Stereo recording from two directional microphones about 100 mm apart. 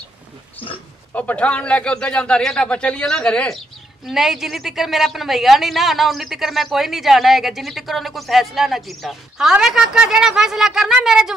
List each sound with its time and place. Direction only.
1.1 s a man's voice: 15° left (ahead or behind); by 11.3 s 5° right (ahead or behind)